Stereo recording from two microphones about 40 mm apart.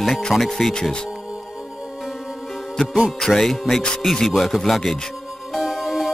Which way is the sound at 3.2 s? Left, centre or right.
Centre.